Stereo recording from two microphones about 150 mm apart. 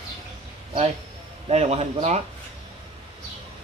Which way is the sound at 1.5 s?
45° right (ahead or behind).